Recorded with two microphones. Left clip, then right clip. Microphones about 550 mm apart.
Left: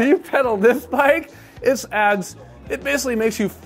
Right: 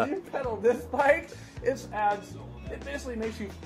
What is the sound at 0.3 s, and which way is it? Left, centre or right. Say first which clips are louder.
Speech: left 11 dB; left.